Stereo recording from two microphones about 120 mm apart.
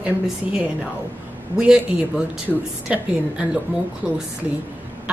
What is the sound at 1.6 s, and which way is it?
A woman's voice, 10° right (ahead or behind).